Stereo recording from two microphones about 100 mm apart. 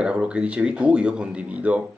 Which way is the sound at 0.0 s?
10° right (ahead or behind).